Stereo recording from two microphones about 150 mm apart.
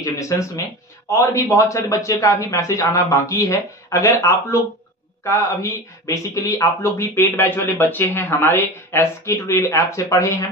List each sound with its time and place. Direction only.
0.0 s a man's voice: 20° left (ahead or behind)